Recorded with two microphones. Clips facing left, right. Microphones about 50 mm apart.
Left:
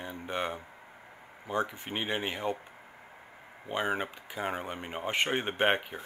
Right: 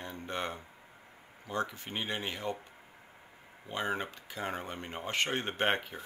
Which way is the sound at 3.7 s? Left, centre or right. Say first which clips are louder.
Left 3 dB; centre.